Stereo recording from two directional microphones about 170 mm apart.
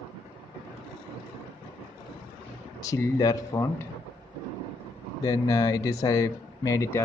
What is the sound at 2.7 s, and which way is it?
Speech, 20° left (ahead or behind).